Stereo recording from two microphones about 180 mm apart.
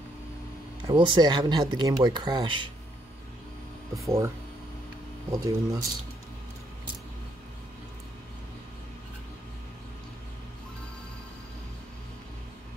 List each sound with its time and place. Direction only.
0.8 s speech: 25° right (ahead or behind)
4.0 s speech: 15° right (ahead or behind)
5.3 s speech: 20° right (ahead or behind)